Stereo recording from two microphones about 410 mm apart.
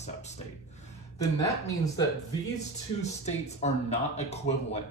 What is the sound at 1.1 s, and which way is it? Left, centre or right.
Speech, centre.